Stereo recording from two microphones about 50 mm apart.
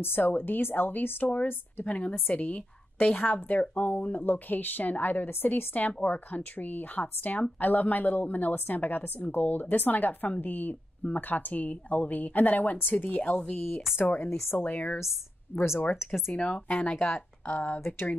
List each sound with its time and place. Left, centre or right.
0.0 s speech: left
16.3 s speech: left
17.7 s speech: left